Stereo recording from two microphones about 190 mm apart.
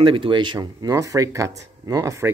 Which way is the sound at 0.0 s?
30° right (ahead or behind).